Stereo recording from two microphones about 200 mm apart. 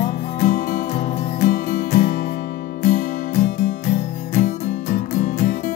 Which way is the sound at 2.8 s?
35° left (ahead or behind).